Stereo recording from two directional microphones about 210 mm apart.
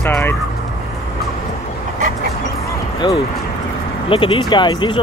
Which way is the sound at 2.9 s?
20° left (ahead or behind).